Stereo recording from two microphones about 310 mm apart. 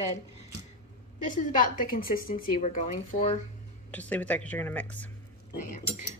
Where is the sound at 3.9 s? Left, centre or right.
Centre.